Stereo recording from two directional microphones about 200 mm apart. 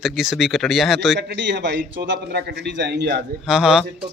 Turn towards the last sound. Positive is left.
turn(degrees=-5)  # may be behind; listen again after turning